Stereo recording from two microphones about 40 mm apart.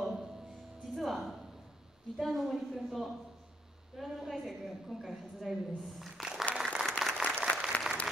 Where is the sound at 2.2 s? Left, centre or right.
Centre.